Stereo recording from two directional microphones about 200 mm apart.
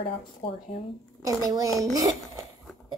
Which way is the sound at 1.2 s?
15° right (ahead or behind).